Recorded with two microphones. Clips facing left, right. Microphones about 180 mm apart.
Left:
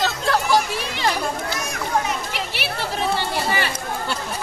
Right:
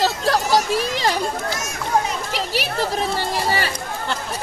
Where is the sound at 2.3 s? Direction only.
35° right (ahead or behind).